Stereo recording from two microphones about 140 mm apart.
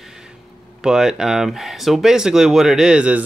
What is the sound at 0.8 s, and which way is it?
Speech, 5° right (ahead or behind).